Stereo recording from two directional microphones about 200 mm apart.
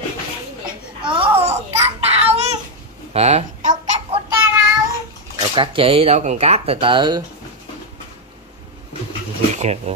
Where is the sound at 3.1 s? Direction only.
30° right (ahead or behind).